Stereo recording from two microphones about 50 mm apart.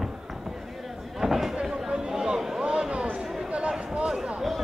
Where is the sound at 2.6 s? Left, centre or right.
Right.